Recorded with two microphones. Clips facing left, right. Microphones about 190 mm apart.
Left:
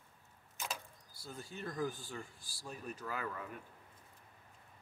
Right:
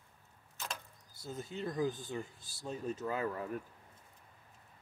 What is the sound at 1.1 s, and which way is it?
Speech, 20° right (ahead or behind).